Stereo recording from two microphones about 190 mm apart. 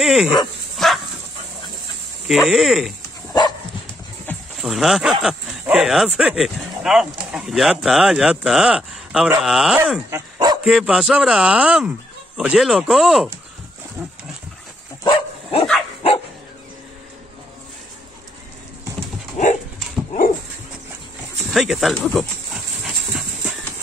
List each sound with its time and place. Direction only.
0.0 s speech: centre (ahead or behind)
0.8 s dog: centre (ahead or behind)
2.2 s speech: centre (ahead or behind)
3.3 s dog: 20° left (ahead or behind)
4.6 s speech: centre (ahead or behind)
10.1 s dog: 20° right (ahead or behind)
10.6 s speech: 5° right (ahead or behind)
19.3 s dog: 40° left (ahead or behind)
21.5 s speech: centre (ahead or behind)
22.8 s dog: 5° right (ahead or behind)